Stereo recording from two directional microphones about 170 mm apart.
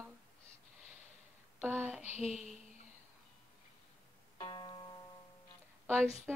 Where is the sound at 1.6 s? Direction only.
10° right (ahead or behind).